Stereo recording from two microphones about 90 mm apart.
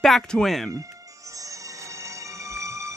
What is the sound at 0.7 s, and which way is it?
Music, 35° right (ahead or behind).